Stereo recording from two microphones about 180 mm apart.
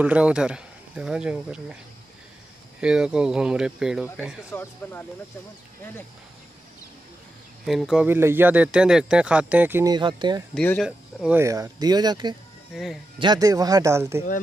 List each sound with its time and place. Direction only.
0.0 s speech: 5° right (ahead or behind)
2.8 s speech: 5° right (ahead or behind)
4.5 s speech: 10° left (ahead or behind)
7.6 s speech: centre (ahead or behind)
9.9 s speech: 25° right (ahead or behind)
10.5 s speech: 5° left (ahead or behind)
10.9 s speech: 5° right (ahead or behind)
11.4 s speech: 20° right (ahead or behind)
12.7 s speech: centre (ahead or behind)
13.2 s speech: 20° right (ahead or behind)